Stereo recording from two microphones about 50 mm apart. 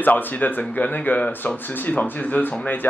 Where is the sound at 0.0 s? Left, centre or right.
Left.